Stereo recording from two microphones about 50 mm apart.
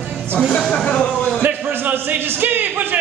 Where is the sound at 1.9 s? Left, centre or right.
Right.